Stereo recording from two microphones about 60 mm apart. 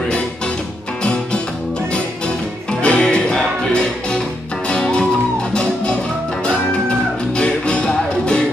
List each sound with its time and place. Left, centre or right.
2.8 s music: centre
7.3 s music: centre